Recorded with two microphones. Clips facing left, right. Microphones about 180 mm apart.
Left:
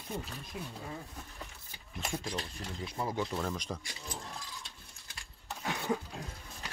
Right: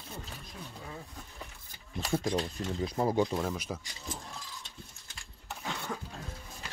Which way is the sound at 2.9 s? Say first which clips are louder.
Right 7 dB; 40° right (ahead or behind).